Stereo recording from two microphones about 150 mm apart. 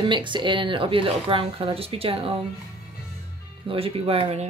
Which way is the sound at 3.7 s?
40° right (ahead or behind).